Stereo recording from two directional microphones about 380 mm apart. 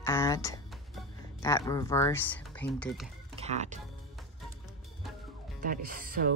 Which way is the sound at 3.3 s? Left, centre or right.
Centre.